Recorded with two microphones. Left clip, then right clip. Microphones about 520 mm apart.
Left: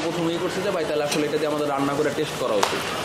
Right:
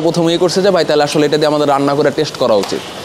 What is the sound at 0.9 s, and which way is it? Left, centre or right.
A man's voice, right.